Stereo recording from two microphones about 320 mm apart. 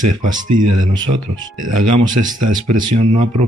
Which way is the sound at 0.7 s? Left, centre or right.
Right.